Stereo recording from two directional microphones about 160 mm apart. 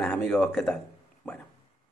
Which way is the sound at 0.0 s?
5° left (ahead or behind).